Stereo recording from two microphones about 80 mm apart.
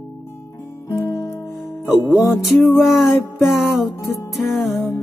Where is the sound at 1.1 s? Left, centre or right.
Left.